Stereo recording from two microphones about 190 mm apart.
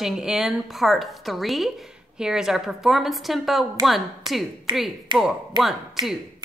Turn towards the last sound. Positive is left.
turn(degrees=0)  # may be behind; listen again after turning